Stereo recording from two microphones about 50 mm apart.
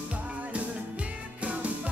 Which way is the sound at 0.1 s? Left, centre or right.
Right.